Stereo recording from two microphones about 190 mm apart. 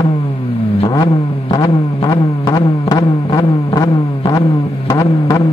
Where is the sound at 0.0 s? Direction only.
25° left (ahead or behind).